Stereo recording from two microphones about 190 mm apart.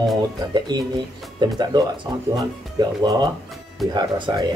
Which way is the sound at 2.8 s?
20° right (ahead or behind).